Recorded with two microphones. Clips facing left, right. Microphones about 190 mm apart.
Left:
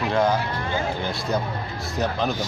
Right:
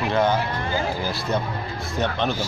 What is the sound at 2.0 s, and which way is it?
Speech, centre (ahead or behind).